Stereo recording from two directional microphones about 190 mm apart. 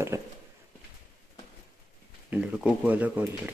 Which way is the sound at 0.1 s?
15° right (ahead or behind).